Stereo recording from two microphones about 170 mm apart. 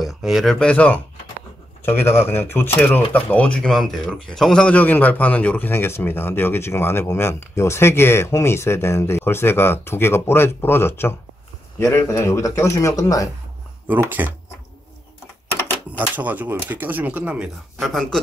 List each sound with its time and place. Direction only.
0.0 s speech: centre (ahead or behind); by 13.3 s 20° left (ahead or behind)
13.8 s speech: 10° right (ahead or behind)
16.2 s speech: 10° right (ahead or behind)